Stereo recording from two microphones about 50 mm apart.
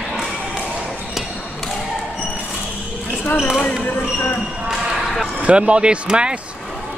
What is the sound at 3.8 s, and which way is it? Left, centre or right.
Basketball bounce, left.